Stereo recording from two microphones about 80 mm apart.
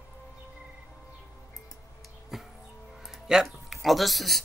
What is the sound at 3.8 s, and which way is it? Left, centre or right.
Speech, centre.